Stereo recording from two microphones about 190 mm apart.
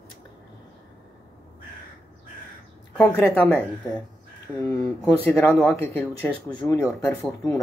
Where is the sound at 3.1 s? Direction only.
10° left (ahead or behind).